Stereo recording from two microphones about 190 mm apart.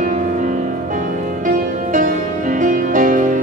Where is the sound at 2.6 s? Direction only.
45° right (ahead or behind).